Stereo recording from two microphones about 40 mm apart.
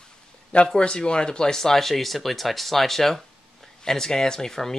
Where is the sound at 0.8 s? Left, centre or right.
Left.